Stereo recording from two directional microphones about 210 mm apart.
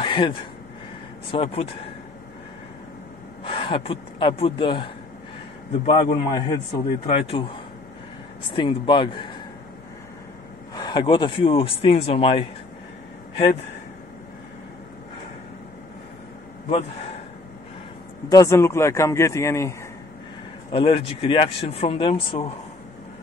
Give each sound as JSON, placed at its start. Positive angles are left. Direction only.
{"t": 0.0, "sound": "a sound", "side_deg": 25}
{"t": 1.3, "sound": "speech", "side_deg": 25}
{"t": 3.4, "sound": "speech", "side_deg": 25}
{"t": 8.5, "sound": "speech", "side_deg": 25}
{"t": 10.7, "sound": "speech", "side_deg": 20}
{"t": 18.3, "sound": "a man's voice", "side_deg": 15}
{"t": 20.7, "sound": "speech", "side_deg": 25}